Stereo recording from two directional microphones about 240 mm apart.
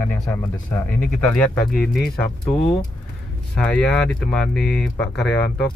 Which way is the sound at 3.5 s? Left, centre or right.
Centre.